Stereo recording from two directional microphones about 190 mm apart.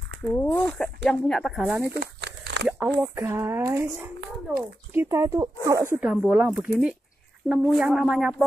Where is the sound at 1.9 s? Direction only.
65° right (ahead or behind).